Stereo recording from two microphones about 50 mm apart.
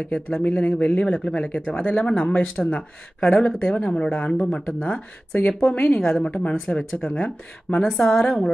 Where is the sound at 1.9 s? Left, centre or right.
Centre.